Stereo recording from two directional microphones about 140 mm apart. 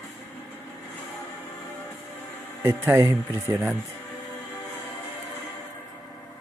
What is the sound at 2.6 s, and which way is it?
Speech, 15° right (ahead or behind).